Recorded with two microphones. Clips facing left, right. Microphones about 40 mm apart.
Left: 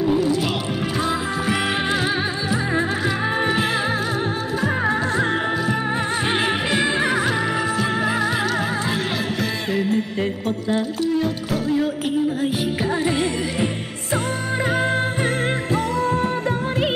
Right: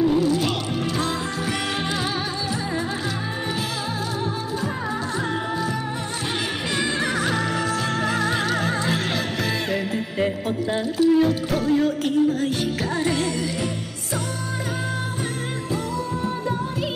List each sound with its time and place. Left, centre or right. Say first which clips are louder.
0.0 s music: even; centre
6.7 s music: left 1 dB; centre